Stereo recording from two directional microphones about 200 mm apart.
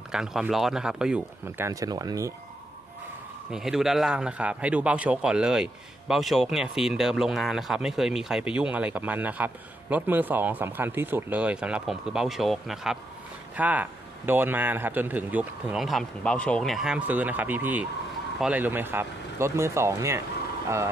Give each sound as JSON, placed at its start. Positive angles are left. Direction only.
{"t": 0.1, "sound": "a man's voice", "side_deg": -5}
{"t": 1.7, "sound": "a man's voice", "side_deg": -15}
{"t": 3.5, "sound": "a man's voice", "side_deg": 0}